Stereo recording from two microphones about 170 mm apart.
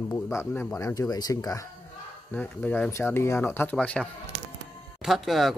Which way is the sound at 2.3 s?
10° left (ahead or behind).